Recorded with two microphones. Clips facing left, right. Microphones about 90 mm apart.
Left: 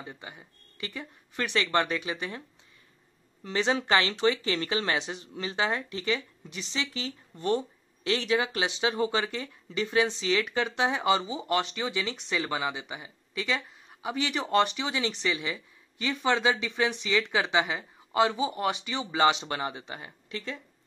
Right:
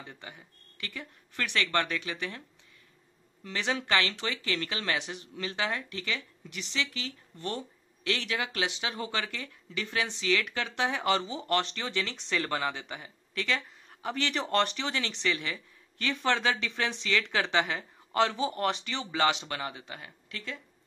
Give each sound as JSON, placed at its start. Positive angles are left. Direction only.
{"t": 0.0, "sound": "speech", "side_deg": 20}
{"t": 3.4, "sound": "speech", "side_deg": 25}